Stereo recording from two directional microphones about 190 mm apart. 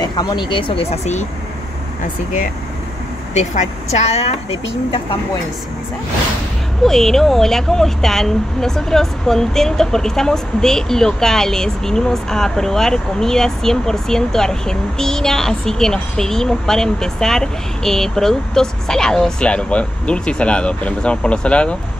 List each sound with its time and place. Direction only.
0.0 s speech: 20° left (ahead or behind)
3.3 s speech: 35° left (ahead or behind)
6.8 s speech: centre (ahead or behind)